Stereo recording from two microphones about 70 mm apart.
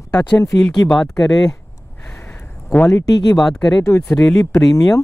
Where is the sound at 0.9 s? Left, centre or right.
Centre.